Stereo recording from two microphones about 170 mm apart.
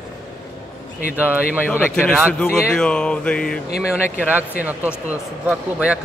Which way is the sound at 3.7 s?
10° right (ahead or behind).